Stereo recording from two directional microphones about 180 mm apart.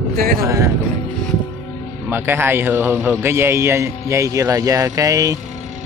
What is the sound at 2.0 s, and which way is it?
A man's voice, 10° right (ahead or behind).